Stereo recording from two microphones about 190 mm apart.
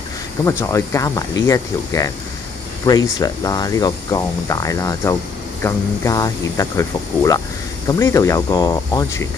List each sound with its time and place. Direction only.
0.5 s speech: 15° left (ahead or behind)